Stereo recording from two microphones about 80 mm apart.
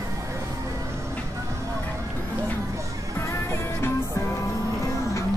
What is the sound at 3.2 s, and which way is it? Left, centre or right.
Music, left.